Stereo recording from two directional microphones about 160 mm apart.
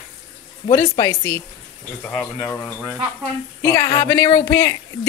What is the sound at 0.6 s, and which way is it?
Speech, 20° left (ahead or behind).